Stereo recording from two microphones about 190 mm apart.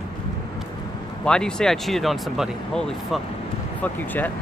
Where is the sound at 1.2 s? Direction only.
5° left (ahead or behind).